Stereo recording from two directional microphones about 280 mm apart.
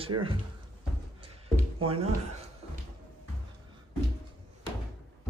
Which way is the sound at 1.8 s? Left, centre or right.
Right.